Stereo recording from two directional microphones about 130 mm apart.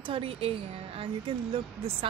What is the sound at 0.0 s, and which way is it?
Speech, 45° right (ahead or behind).